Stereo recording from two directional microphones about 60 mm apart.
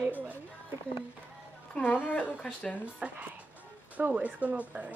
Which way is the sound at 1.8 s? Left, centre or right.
Left.